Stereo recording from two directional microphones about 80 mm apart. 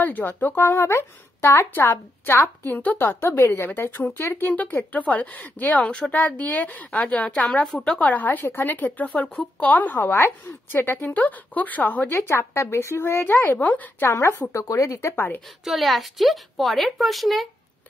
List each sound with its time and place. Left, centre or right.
0.0 s speech: left
12.1 s speech: left
14.5 s speech: left
15.6 s a woman's voice: centre